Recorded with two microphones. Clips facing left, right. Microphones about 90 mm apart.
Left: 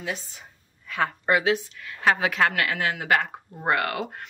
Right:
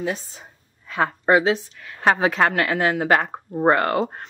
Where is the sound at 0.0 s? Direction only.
35° right (ahead or behind).